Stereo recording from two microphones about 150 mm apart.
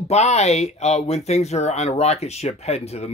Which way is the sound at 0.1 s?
45° left (ahead or behind).